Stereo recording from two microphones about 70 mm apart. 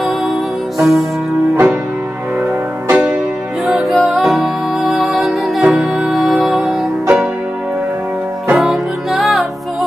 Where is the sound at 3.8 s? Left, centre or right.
Centre.